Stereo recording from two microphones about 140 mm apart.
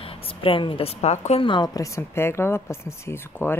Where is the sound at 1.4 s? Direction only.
35° left (ahead or behind).